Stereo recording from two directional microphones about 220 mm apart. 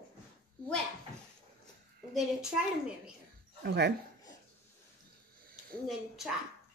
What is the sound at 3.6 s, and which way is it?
Speech, 50° right (ahead or behind).